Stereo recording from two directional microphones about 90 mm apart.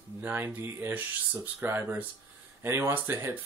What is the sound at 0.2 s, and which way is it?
Speech, 25° right (ahead or behind).